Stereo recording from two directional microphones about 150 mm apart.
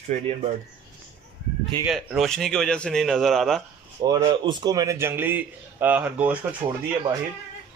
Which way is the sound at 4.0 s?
25° right (ahead or behind).